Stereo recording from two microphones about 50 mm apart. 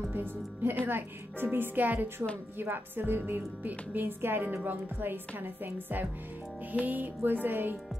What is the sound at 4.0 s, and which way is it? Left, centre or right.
A woman's voice, right.